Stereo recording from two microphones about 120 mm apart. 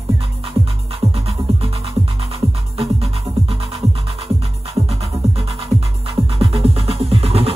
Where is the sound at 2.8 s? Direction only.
50° right (ahead or behind).